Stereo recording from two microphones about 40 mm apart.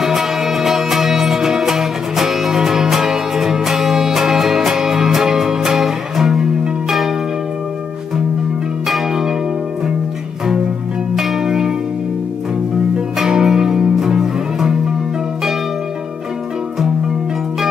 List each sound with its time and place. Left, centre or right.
0.0 s music: centre
6.9 s church bell: centre
11.1 s church bell: centre
11.4 s church bell: centre
13.2 s music: centre